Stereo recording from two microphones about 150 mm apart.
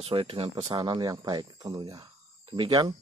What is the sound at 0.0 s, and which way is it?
Speech, 40° right (ahead or behind).